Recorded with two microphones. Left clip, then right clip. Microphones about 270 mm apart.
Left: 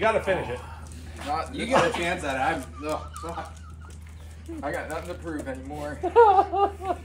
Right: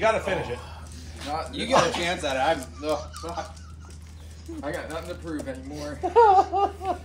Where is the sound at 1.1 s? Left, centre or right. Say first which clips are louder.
Left 1 dB; centre.